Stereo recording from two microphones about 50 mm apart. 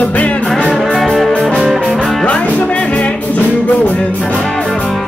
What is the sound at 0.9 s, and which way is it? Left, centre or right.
Music, centre.